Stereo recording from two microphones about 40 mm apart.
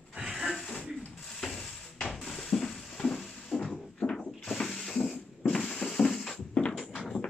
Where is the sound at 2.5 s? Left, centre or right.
Centre.